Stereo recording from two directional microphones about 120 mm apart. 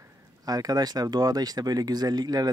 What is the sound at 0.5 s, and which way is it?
Speech, 30° right (ahead or behind).